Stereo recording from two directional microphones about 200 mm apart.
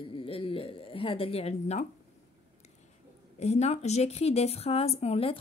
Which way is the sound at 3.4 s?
35° left (ahead or behind).